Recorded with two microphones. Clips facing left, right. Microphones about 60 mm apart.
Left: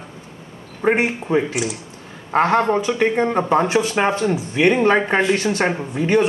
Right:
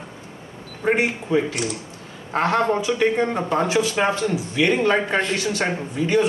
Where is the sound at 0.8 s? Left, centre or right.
Left.